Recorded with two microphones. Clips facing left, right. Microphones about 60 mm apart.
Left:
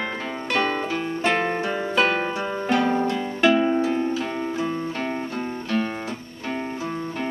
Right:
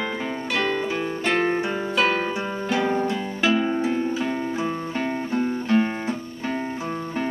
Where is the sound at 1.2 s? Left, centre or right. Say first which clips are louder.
Right 1 dB; centre.